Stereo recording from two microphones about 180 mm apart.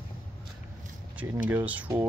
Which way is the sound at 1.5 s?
10° right (ahead or behind).